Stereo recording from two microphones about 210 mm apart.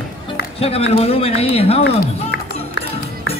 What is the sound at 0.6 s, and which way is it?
Speech, 30° left (ahead or behind).